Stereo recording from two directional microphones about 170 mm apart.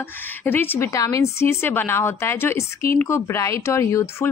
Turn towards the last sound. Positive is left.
turn(degrees=15)  # may be behind; listen again after turning